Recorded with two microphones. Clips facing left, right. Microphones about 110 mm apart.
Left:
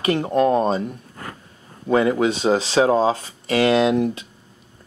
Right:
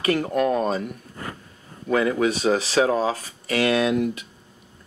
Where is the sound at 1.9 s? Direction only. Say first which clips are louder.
Left 3 dB; 25° left (ahead or behind).